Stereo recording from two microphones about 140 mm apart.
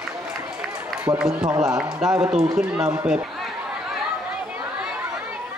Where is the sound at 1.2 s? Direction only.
5° right (ahead or behind).